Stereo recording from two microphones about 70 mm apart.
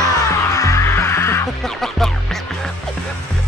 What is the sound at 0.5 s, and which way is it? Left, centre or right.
Music, left.